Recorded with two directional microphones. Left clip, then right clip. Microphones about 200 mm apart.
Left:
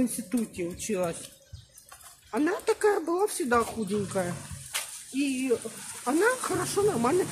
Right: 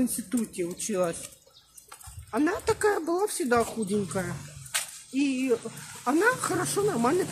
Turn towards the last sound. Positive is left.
turn(degrees=-20)  # may be behind; listen again after turning